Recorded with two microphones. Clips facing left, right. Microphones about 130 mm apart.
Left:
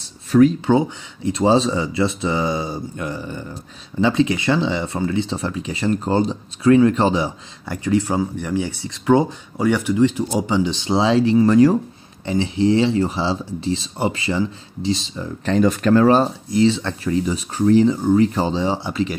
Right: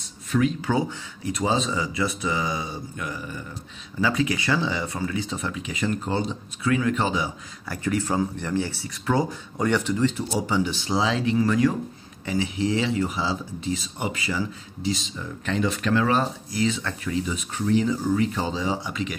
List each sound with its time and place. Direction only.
0.3 s speech: 45° left (ahead or behind)
0.7 s speech: 25° left (ahead or behind)